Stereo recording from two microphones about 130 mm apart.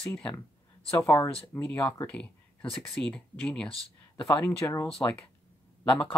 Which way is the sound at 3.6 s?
45° left (ahead or behind).